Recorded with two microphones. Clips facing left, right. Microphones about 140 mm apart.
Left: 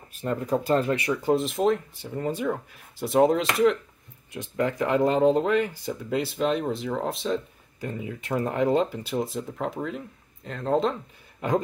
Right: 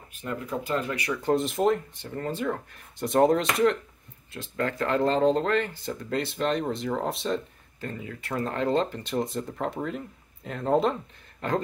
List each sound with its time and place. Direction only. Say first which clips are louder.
0.1 s speech: left 6 dB; 35° left (ahead or behind)
1.1 s speech: right 1 dB; 5° left (ahead or behind)
2.0 s speech: left 2 dB; 10° left (ahead or behind)
4.3 s speech: left 3 dB; 15° left (ahead or behind); by 7.4 s centre (ahead or behind)
7.8 s speech: left 3 dB; 15° left (ahead or behind); by 11.0 s 5° right (ahead or behind)
11.4 s speech: left 3 dB; 10° left (ahead or behind)